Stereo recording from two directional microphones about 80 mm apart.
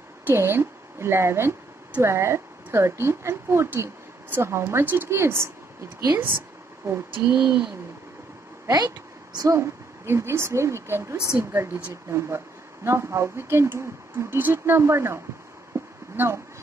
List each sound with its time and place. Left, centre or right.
0.3 s a woman's voice: right
6.9 s speech: right
7.4 s speech: centre
8.6 s a sound: right
9.5 s a woman's voice: right
15.7 s a sound: right